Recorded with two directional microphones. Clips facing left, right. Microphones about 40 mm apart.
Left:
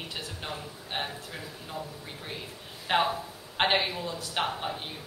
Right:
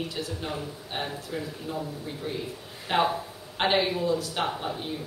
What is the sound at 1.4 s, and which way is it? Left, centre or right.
Speech, centre.